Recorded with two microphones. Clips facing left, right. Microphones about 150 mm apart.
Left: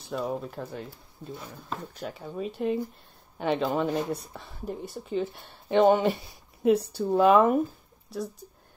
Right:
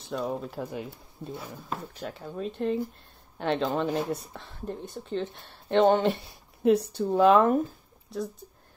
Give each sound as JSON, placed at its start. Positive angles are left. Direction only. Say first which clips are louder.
{"t": 0.0, "sound": "speech", "louder": "even", "side_deg": 0}
{"t": 0.7, "sound": "speech", "louder": "right 2 dB", "side_deg": -15}
{"t": 2.0, "sound": "speech", "louder": "left 1 dB", "side_deg": 0}